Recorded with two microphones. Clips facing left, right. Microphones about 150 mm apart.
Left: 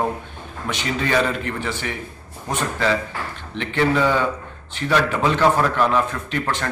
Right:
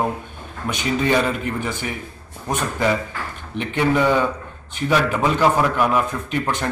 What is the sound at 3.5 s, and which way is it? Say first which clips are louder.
A man's voice: right 1 dB; 15° right (ahead or behind).